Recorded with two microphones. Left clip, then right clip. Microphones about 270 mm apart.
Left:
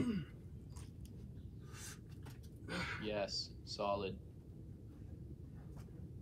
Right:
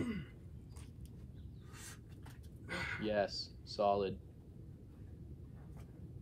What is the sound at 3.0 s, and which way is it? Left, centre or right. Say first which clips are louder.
Speech: right 7 dB; right.